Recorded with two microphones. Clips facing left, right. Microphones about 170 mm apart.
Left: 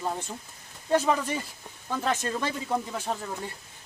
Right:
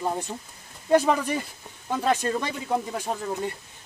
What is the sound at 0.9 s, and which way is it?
Speech, 10° right (ahead or behind).